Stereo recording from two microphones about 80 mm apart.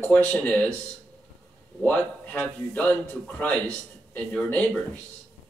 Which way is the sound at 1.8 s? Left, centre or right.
Centre.